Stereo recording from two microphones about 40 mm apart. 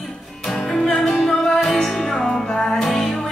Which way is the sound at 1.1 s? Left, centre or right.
Left.